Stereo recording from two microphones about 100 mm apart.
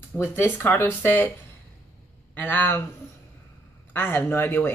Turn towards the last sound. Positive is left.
turn(degrees=20)  # may be behind; listen again after turning